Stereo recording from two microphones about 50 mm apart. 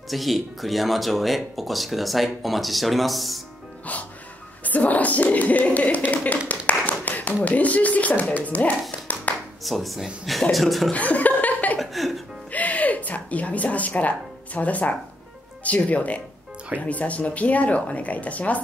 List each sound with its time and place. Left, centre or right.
0.1 s speech: centre
3.9 s music: left
4.6 s a sound: left
7.4 s speech: left
9.3 s a sound: left
9.6 s speech: centre
10.9 s laughter: left
11.8 s music: centre
12.4 s a sound: left
15.6 s speech: left